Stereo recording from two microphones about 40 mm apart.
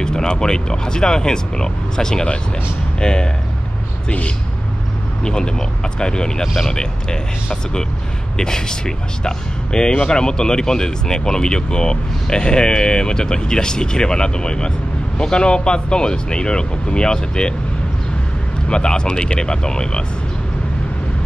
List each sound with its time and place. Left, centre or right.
0.0 s speech: centre
5.2 s speech: left
6.4 s speech: centre
6.7 s speech: centre
8.4 s speech: centre
18.7 s speech: left